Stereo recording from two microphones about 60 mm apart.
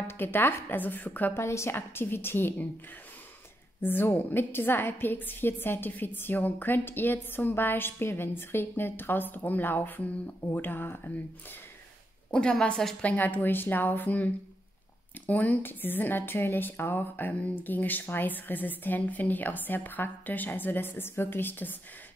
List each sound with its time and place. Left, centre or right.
0.0 s speech: left
1.3 s speech: left
3.8 s speech: left
12.3 s a woman's voice: centre
13.0 s speech: left